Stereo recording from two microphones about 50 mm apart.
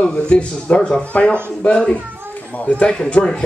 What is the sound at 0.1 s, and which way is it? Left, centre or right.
A man's voice, left.